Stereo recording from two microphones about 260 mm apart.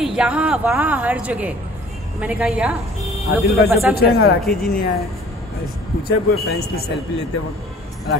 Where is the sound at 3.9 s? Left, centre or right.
Left.